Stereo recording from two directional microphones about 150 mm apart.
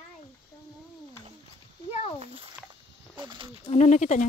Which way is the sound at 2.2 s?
40° right (ahead or behind).